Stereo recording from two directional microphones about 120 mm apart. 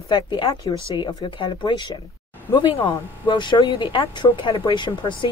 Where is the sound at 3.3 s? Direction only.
40° left (ahead or behind).